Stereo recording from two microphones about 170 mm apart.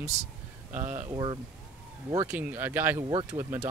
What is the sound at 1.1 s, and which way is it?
Speech, 30° right (ahead or behind).